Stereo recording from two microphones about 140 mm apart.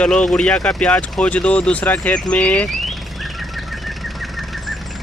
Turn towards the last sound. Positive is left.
turn(degrees=0)  # may be behind; listen again after turning